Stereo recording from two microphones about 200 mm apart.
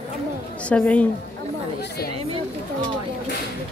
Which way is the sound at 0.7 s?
5° left (ahead or behind).